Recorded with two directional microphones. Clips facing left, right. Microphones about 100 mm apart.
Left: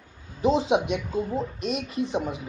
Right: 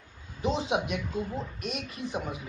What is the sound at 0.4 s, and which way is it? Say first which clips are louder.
Speech: left 7 dB; 35° left (ahead or behind).